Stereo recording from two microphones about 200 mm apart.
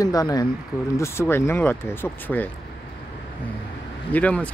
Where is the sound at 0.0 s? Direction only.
20° left (ahead or behind).